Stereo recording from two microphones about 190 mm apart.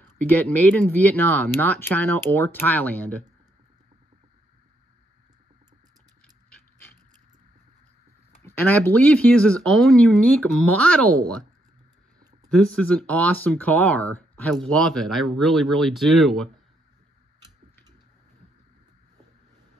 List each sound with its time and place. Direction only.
0.3 s speech: 10° left (ahead or behind)
8.5 s speech: 10° left (ahead or behind)
12.7 s speech: 5° left (ahead or behind)